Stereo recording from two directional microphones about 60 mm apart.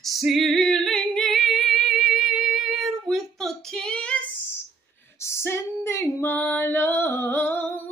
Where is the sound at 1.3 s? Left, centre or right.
Centre.